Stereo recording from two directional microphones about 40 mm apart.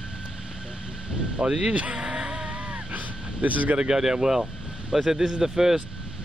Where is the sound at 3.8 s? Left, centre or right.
Centre.